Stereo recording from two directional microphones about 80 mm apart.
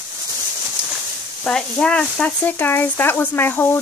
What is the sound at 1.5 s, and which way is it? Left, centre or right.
Speech, centre.